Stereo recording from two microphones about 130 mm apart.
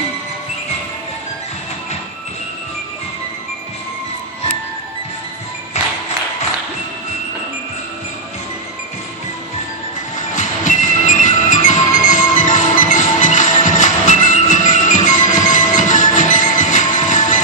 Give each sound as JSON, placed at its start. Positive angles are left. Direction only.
{"t": 10.1, "sound": "music", "side_deg": 70}